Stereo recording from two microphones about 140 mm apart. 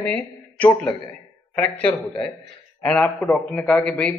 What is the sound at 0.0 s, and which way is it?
Speech, 10° left (ahead or behind).